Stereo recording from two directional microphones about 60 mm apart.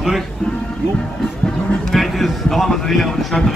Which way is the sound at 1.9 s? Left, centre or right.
Centre.